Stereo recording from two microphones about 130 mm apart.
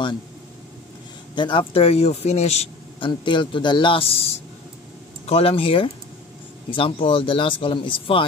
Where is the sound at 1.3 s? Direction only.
40° left (ahead or behind); by 3.1 s 55° left (ahead or behind).